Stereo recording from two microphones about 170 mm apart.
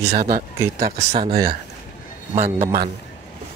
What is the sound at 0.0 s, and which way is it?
Speech, 40° right (ahead or behind).